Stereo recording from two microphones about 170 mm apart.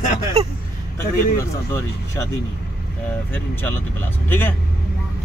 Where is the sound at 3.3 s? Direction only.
10° left (ahead or behind).